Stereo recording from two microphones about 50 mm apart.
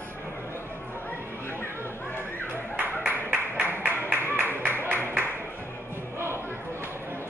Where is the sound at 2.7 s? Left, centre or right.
Right.